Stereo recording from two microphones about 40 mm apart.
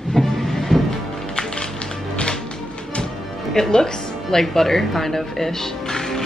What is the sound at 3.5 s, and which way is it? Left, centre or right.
Music, centre.